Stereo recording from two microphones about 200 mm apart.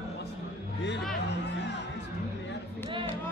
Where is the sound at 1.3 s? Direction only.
60° left (ahead or behind).